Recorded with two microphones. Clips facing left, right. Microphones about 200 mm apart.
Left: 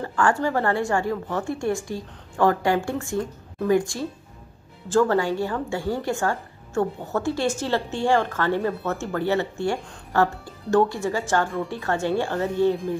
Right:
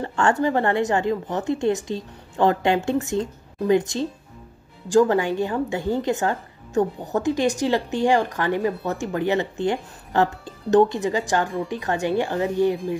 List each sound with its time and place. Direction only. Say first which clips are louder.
0.0 s a woman's voice: right 2 dB; 25° right (ahead or behind)